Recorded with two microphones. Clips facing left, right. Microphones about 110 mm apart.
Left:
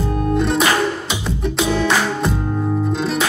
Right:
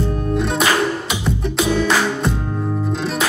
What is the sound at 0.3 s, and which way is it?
Music, centre (ahead or behind).